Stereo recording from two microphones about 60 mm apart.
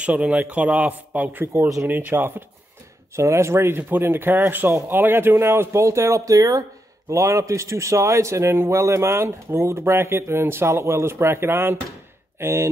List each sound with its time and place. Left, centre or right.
0.0 s speech: right
3.2 s a man's voice: right
7.1 s a man's voice: right